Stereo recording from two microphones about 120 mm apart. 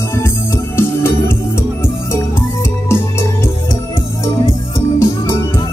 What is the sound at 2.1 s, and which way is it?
Music, 20° left (ahead or behind).